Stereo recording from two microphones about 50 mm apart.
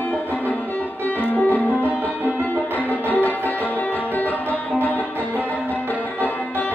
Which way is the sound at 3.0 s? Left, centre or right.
Left.